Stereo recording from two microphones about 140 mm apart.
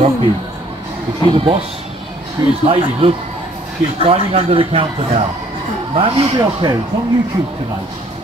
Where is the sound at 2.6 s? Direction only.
40° right (ahead or behind).